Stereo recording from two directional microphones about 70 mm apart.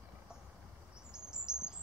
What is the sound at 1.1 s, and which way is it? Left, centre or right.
Chirp, centre.